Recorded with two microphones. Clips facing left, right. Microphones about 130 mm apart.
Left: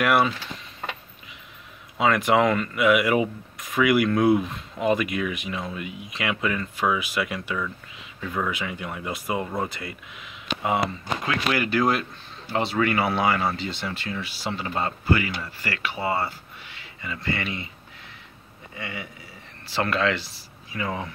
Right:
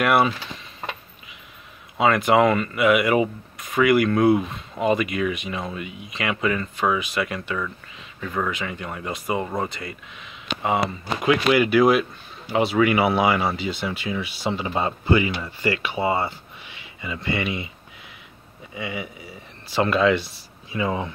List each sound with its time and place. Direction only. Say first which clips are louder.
0.0 s speech: right 2 dB; 5° right (ahead or behind)
2.0 s speech: right 2 dB; centre (ahead or behind)
11.2 s speech: right 8 dB; 15° right (ahead or behind)
18.8 s speech: right 5 dB; 15° right (ahead or behind)